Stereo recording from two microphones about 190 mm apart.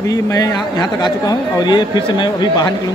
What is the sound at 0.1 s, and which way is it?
Speech, 20° left (ahead or behind).